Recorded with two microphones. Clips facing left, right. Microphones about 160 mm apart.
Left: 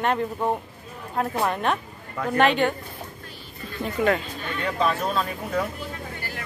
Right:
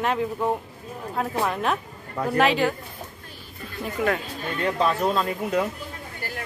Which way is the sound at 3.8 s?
5° right (ahead or behind).